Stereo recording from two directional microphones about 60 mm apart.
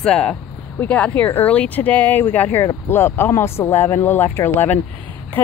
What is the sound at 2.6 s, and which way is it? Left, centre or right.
Speech, left.